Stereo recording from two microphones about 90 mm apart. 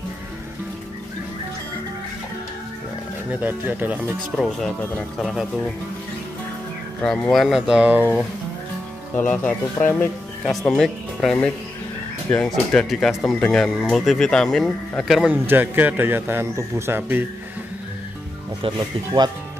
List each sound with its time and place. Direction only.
3.3 s speech: 20° right (ahead or behind)
4.4 s a man's voice: 5° left (ahead or behind)
7.0 s speech: 5° left (ahead or behind)
7.4 s a man's voice: 5° right (ahead or behind)
7.8 s a man's voice: 20° right (ahead or behind)
9.1 s speech: 20° left (ahead or behind)
10.4 s speech: centre (ahead or behind)
12.4 s a man's voice: 5° left (ahead or behind)
13.7 s a man's voice: 5° right (ahead or behind)
15.3 s a man's voice: 25° right (ahead or behind)
18.8 s speech: 50° right (ahead or behind)